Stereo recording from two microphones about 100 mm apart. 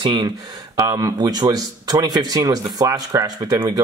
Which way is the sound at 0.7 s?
35° right (ahead or behind).